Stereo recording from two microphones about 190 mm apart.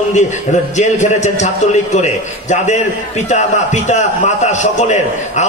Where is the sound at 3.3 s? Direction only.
40° left (ahead or behind).